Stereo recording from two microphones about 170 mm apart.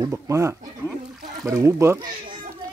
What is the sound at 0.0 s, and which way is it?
Speech, 20° right (ahead or behind).